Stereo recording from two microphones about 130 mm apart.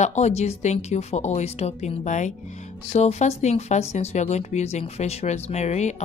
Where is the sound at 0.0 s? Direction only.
60° left (ahead or behind).